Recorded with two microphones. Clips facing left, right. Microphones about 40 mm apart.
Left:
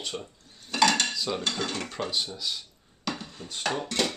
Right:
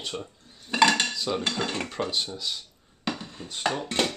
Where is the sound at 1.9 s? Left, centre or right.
Centre.